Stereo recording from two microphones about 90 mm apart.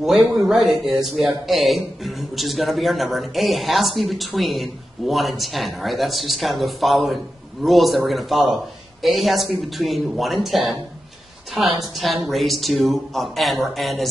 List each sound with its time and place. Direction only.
0.0 s speech: centre (ahead or behind)